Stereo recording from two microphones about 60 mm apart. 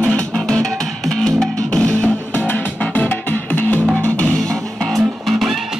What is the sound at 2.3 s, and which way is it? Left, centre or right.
Music, left.